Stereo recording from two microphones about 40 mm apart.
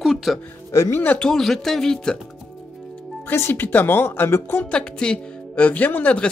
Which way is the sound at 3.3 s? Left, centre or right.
Left.